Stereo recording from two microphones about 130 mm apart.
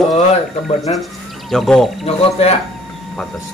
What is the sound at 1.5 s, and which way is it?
Speech, centre (ahead or behind).